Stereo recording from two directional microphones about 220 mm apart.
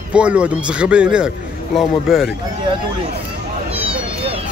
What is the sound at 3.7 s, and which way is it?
Cat, 25° right (ahead or behind).